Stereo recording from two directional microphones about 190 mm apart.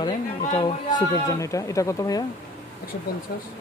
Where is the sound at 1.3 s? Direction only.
15° left (ahead or behind).